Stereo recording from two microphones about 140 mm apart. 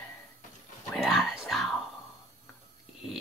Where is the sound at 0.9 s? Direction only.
Centre (ahead or behind).